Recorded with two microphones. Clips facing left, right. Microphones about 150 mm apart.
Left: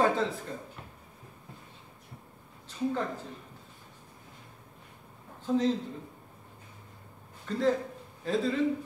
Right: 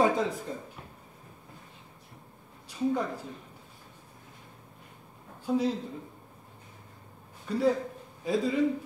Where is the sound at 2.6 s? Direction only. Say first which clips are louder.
Right 2 dB; 10° right (ahead or behind).